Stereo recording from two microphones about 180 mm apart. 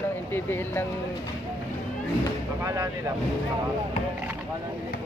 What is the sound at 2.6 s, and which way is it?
Speech, 15° right (ahead or behind).